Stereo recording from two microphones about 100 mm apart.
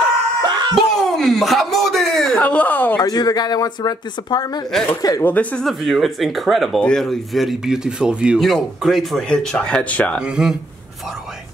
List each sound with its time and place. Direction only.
0.4 s a sound: 45° right (ahead or behind)
0.7 s a sound: 5° left (ahead or behind)
2.4 s speech: 15° left (ahead or behind)
3.0 s speech: 40° left (ahead or behind)
4.7 s speech: 5° left (ahead or behind)
5.2 s speech: 15° left (ahead or behind)
5.7 s speech: centre (ahead or behind)
8.4 s speech: 5° left (ahead or behind)
10.2 s speech: 5° right (ahead or behind)